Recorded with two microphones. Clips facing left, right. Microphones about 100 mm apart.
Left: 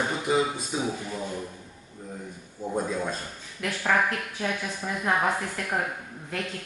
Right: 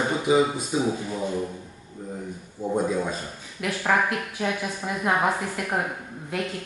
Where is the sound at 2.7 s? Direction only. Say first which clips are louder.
Right 4 dB; 5° right (ahead or behind).